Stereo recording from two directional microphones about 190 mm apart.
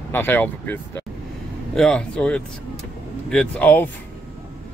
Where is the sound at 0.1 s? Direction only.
10° left (ahead or behind).